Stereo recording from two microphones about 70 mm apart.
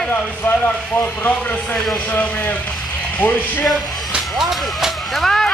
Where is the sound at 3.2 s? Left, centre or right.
Left.